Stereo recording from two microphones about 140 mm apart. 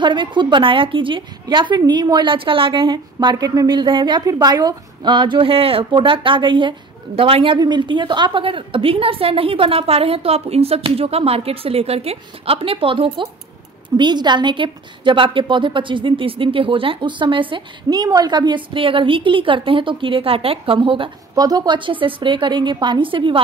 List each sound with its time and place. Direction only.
0.0 s a woman's voice: 35° right (ahead or behind)
7.5 s a woman's voice: 30° right (ahead or behind)
21.4 s a woman's voice: 25° right (ahead or behind)